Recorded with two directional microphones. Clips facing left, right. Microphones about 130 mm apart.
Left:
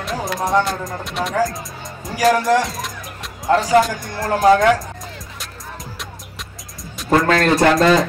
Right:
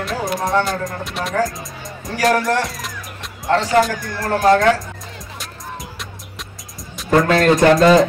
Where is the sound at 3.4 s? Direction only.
Centre (ahead or behind).